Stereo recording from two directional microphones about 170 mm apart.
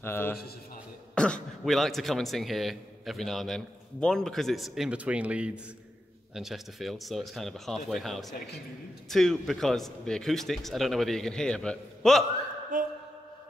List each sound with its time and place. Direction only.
0.0 s a man's voice: 15° left (ahead or behind)
12.7 s speech: 50° right (ahead or behind)